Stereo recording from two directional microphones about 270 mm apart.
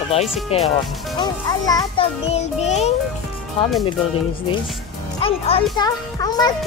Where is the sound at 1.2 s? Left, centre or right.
Centre.